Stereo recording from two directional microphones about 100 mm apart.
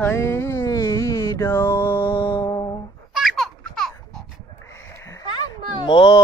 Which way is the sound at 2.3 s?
60° left (ahead or behind).